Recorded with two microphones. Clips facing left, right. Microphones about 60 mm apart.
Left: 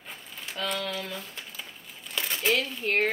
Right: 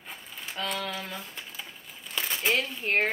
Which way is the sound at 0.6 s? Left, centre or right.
Centre.